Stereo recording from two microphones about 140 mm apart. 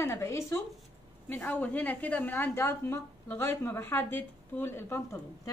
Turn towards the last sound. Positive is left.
turn(degrees=15)  # may be behind; listen again after turning